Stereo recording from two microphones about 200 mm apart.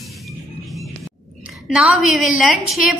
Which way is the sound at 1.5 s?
Centre (ahead or behind).